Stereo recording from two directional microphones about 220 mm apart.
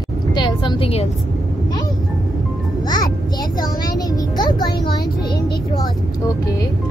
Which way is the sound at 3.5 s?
15° left (ahead or behind).